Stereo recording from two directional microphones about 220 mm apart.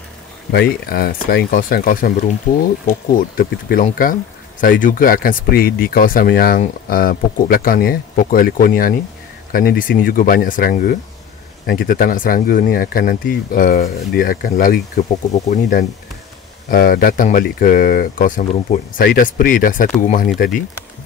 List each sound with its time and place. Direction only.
0.5 s speech: 45° left (ahead or behind)